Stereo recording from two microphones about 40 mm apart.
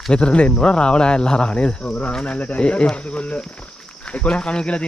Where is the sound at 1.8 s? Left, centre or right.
Left.